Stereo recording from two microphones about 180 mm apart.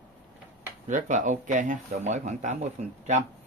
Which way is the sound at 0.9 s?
45° right (ahead or behind).